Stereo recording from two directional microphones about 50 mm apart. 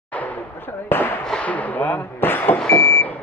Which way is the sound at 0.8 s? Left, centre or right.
Left.